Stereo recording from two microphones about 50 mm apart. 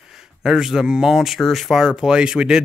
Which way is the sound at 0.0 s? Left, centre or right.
Centre.